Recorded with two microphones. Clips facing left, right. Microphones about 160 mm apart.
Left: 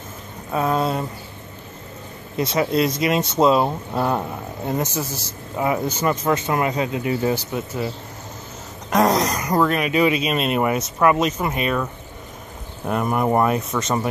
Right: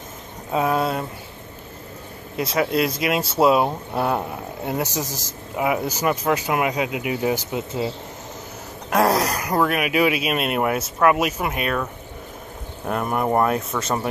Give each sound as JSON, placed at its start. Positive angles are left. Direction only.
{"t": 0.5, "sound": "speech", "side_deg": -15}
{"t": 0.7, "sound": "speech", "side_deg": 0}
{"t": 2.3, "sound": "speech", "side_deg": -5}
{"t": 5.0, "sound": "speech", "side_deg": -40}
{"t": 5.6, "sound": "speech", "side_deg": -10}
{"t": 8.9, "sound": "speech", "side_deg": -5}